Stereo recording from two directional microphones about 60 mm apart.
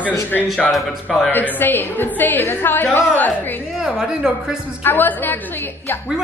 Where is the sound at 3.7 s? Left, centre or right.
Centre.